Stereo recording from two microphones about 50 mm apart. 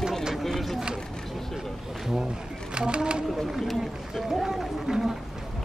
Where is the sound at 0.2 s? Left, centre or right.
Centre.